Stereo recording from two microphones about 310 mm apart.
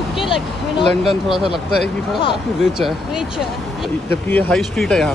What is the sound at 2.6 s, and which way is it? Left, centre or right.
Speech, centre.